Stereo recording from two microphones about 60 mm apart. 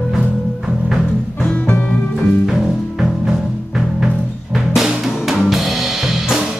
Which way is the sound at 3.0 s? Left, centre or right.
Centre.